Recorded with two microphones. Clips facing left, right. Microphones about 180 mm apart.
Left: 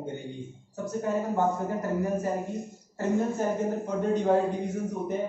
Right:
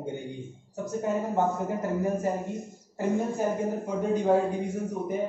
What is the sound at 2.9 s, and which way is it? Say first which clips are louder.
Speech: even; 10° right (ahead or behind).